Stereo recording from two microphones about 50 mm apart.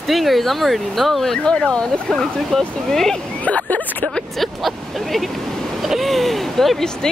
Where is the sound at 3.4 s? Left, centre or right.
Left.